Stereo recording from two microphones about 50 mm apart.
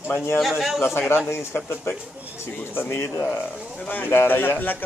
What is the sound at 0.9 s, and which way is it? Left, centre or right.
A man's voice, left.